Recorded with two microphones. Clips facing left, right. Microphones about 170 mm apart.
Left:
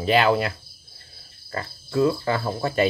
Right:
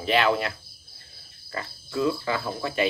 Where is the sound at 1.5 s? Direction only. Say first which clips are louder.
Left 5 dB; 40° left (ahead or behind).